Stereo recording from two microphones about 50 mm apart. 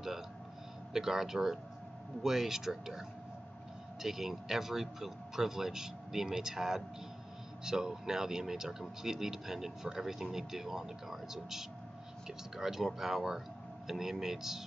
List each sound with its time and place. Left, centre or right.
0.9 s a man's voice: centre